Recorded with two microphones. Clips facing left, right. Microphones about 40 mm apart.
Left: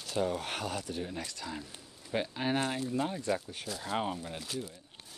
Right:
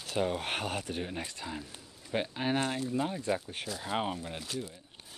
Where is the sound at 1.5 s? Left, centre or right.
Centre.